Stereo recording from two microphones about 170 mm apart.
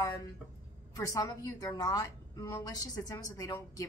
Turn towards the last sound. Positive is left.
turn(degrees=20)  # may be behind; listen again after turning